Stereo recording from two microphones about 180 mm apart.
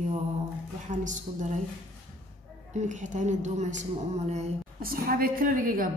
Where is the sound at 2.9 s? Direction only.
40° right (ahead or behind).